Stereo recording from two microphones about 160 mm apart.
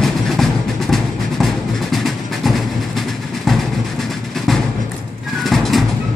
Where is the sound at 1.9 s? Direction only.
Centre (ahead or behind).